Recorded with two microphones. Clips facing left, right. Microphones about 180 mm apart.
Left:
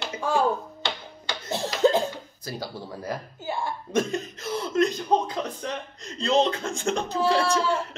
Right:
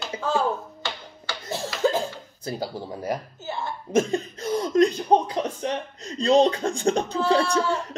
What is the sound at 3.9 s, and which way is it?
Speech, 35° right (ahead or behind).